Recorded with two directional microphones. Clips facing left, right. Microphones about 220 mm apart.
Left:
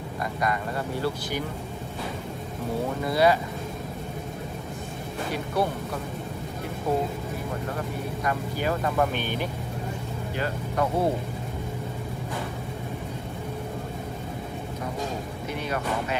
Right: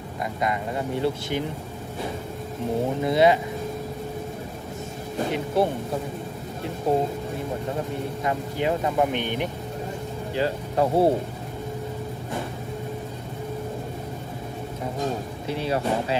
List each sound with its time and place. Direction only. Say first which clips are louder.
0.4 s speech: right 2 dB; 20° right (ahead or behind)
3.0 s speech: right 3 dB; 20° right (ahead or behind)
5.3 s speech: right 3 dB; 25° right (ahead or behind)
6.9 s speech: right 3 dB; 25° right (ahead or behind)
15.5 s speech: right 5 dB; 30° right (ahead or behind)